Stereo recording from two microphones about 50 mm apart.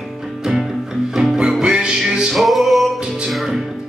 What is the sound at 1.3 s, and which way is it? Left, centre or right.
Music, centre.